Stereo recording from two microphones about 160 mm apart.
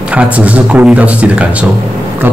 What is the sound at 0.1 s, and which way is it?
A man's voice, 10° right (ahead or behind).